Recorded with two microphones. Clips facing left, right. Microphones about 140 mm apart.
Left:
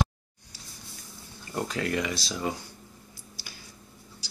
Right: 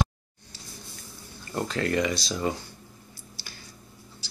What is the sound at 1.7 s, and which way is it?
Speech, 5° left (ahead or behind).